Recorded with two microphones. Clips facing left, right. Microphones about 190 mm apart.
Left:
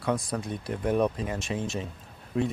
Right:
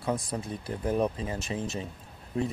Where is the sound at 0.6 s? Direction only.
30° right (ahead or behind).